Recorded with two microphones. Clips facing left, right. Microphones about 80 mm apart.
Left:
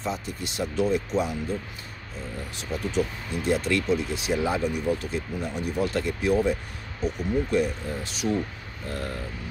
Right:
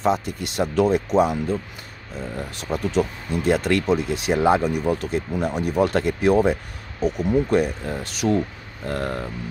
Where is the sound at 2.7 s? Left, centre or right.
Right.